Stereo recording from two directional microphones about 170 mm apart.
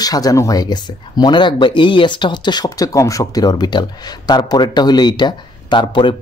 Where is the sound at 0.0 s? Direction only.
20° left (ahead or behind).